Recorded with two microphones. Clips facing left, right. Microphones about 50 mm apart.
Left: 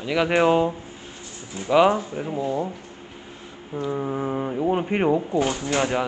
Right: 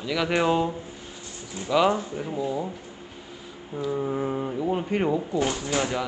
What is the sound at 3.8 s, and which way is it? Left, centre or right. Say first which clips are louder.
Speech: left 1 dB; centre.